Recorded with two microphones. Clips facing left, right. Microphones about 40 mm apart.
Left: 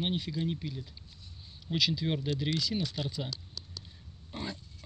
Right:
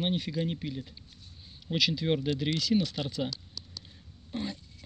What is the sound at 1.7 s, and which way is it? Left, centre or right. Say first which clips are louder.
Speech: right 3 dB; centre.